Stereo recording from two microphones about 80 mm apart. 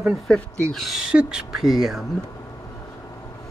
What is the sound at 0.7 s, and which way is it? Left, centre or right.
Speech, centre.